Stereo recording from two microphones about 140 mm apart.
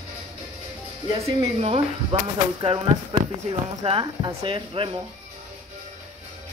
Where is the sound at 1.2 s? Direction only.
45° right (ahead or behind).